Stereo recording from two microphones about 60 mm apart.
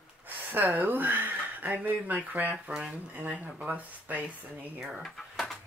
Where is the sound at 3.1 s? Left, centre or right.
Right.